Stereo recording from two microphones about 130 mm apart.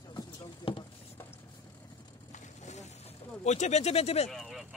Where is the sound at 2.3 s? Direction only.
65° left (ahead or behind).